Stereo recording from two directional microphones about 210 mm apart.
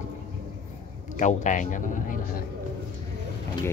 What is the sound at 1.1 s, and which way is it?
Speech, 35° left (ahead or behind).